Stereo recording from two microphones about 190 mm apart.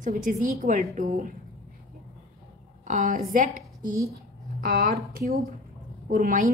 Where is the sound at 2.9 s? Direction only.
40° right (ahead or behind).